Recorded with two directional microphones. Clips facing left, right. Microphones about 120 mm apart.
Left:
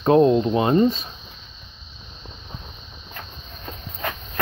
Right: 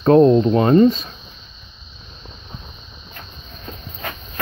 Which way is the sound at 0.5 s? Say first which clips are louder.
Right 5 dB; 15° left (ahead or behind).